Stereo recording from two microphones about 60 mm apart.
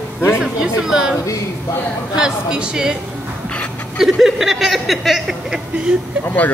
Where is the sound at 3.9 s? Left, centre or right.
Centre.